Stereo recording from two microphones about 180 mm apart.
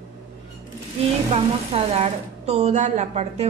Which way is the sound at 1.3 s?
35° right (ahead or behind).